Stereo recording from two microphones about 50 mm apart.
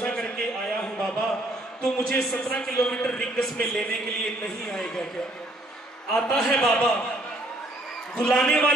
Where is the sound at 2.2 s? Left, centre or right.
Centre.